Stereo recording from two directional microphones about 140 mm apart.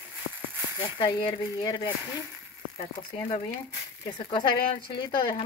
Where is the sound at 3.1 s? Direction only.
30° left (ahead or behind).